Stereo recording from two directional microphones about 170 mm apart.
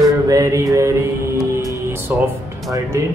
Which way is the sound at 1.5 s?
15° right (ahead or behind).